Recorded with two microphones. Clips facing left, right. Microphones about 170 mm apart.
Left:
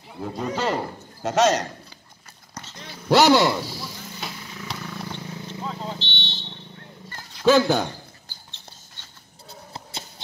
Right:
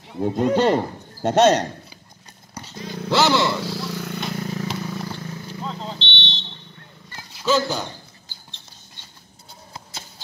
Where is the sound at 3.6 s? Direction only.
90° right; by 4.2 s 70° right (ahead or behind).